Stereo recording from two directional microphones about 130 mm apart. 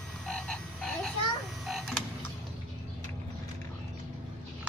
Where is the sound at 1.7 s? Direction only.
Centre (ahead or behind).